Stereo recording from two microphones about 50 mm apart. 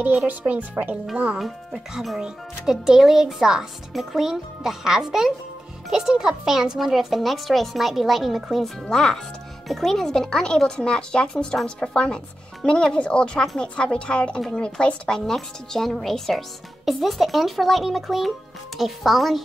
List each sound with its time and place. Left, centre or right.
0.3 s speech: right
1.4 s speech: centre
8.9 s speech: centre